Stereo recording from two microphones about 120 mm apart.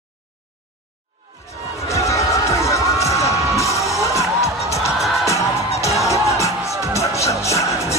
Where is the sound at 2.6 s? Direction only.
25° left (ahead or behind).